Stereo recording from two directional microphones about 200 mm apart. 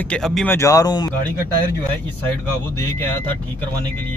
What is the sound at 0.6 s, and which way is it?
Speech, 15° left (ahead or behind).